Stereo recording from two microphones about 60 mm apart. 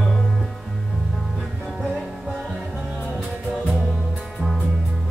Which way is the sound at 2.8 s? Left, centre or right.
Left.